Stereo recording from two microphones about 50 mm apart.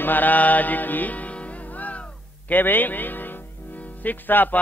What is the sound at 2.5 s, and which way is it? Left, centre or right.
Music, left.